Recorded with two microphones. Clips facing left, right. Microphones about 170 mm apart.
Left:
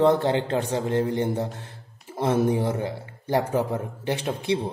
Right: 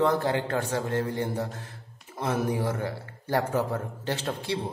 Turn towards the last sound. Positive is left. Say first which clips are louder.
# left 4 dB
turn(degrees=15)  # may be behind; listen again after turning